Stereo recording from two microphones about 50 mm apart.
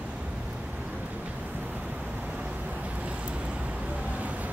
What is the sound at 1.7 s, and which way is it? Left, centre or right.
Vehicle, right.